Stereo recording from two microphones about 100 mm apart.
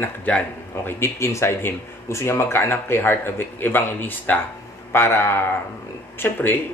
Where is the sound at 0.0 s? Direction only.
15° left (ahead or behind).